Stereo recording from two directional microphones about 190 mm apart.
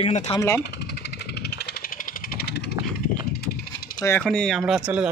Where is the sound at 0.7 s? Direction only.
60° left (ahead or behind).